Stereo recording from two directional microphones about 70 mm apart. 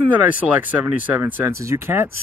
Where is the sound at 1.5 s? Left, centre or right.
Right.